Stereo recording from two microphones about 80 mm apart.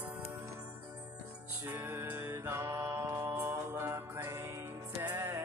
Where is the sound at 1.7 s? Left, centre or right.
Right.